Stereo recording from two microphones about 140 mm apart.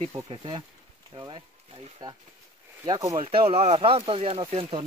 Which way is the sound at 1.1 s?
35° right (ahead or behind).